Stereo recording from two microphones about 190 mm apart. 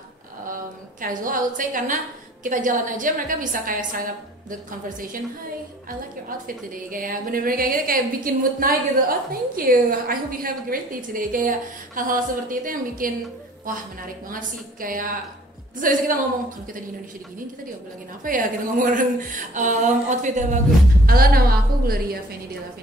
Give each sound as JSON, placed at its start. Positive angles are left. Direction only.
{"t": 1.0, "sound": "a woman's voice", "side_deg": -45}
{"t": 6.4, "sound": "a woman's voice", "side_deg": -45}
{"t": 18.2, "sound": "speech", "side_deg": -45}
{"t": 21.0, "sound": "a woman's voice", "side_deg": -50}